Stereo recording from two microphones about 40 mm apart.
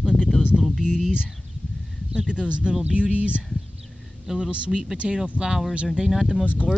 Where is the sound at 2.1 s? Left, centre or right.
Right.